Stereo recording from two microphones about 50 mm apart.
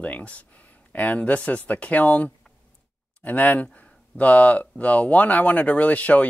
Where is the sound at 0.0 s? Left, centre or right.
Left.